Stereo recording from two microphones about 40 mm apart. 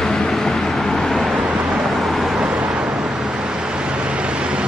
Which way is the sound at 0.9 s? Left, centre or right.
Centre.